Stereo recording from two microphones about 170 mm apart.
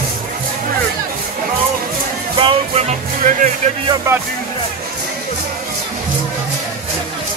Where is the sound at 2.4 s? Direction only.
35° right (ahead or behind).